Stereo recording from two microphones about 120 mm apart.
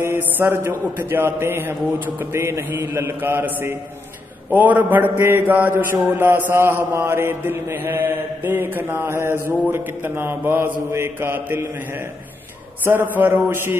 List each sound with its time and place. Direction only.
0.0 s mantra: 20° right (ahead or behind)
4.6 s a man's voice: 15° right (ahead or behind)
6.0 s mantra: 15° right (ahead or behind)
12.8 s a man's voice: 15° right (ahead or behind)